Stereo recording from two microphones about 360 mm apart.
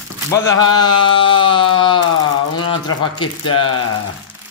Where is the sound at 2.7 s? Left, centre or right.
Left.